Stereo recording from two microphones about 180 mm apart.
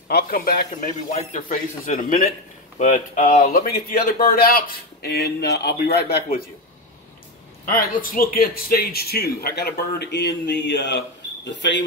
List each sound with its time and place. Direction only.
0.1 s a man's voice: 55° left (ahead or behind)
7.6 s a man's voice: 50° left (ahead or behind); by 11.8 s 75° left (ahead or behind)